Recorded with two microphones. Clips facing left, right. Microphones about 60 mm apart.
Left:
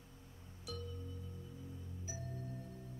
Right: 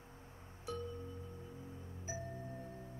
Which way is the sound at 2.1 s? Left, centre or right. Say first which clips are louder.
Right 4 dB; right.